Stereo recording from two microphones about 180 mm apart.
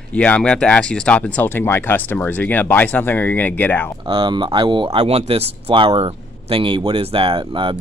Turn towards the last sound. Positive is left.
turn(degrees=-30)  # may be behind; listen again after turning